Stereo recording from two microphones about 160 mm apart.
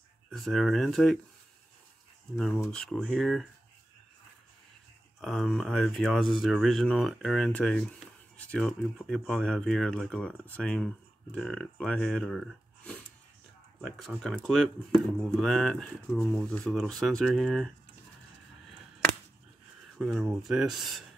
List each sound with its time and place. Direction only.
0.3 s speech: centre (ahead or behind)
2.3 s speech: centre (ahead or behind)
5.2 s speech: centre (ahead or behind)
18.7 s a sound: centre (ahead or behind)
20.0 s speech: centre (ahead or behind)